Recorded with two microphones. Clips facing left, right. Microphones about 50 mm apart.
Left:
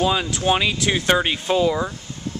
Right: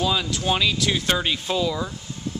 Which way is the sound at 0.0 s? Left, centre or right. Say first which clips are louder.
Left 3 dB; left.